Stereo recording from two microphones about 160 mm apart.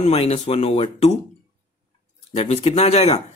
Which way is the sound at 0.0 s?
40° left (ahead or behind).